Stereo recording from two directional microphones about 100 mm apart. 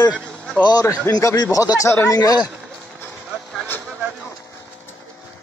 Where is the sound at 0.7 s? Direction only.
40° left (ahead or behind).